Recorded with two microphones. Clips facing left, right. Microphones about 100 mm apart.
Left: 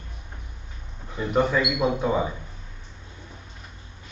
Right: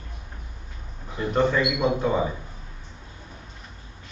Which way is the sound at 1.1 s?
5° left (ahead or behind).